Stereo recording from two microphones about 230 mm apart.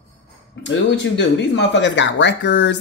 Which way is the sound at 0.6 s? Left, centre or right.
Left.